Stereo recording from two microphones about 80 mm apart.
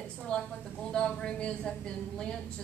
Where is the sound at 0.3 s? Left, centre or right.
Centre.